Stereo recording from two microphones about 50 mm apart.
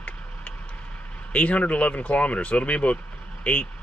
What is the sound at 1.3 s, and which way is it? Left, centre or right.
Speech, left.